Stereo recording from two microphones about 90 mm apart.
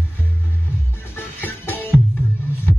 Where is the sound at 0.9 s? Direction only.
25° left (ahead or behind).